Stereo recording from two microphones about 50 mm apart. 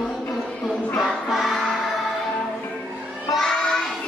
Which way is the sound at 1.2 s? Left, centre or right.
Centre.